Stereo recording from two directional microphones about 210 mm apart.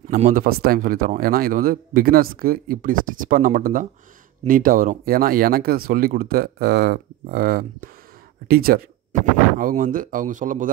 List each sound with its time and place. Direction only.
0.1 s a man's voice: 40° right (ahead or behind)